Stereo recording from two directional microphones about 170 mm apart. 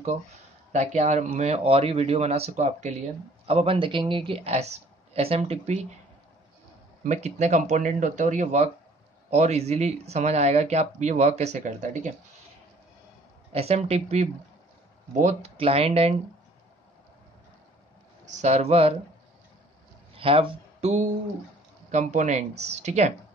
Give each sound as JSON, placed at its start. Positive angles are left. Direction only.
{"t": 0.7, "sound": "speech", "side_deg": -40}
{"t": 7.1, "sound": "speech", "side_deg": -40}
{"t": 13.5, "sound": "speech", "side_deg": -35}
{"t": 18.2, "sound": "speech", "side_deg": -40}
{"t": 20.2, "sound": "speech", "side_deg": -35}